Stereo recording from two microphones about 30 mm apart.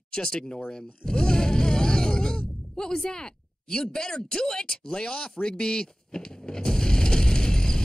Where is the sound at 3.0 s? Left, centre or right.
Left.